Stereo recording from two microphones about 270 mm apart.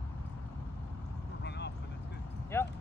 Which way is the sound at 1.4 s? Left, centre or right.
Left.